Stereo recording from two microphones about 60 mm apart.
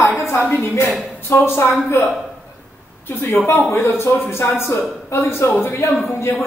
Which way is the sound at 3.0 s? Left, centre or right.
Left.